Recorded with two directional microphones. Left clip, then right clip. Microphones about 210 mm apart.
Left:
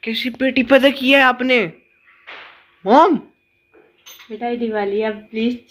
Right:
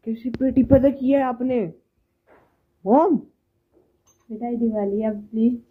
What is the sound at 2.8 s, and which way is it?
Speech, 20° left (ahead or behind).